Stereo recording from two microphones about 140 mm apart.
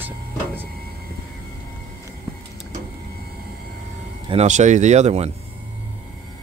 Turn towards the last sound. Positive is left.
turn(degrees=-50)  # may be behind; listen again after turning